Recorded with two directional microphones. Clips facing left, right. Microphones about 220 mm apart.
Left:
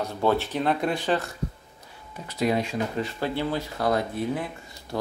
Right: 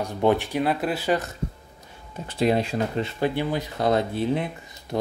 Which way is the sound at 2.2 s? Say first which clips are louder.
Right 3 dB; 30° right (ahead or behind).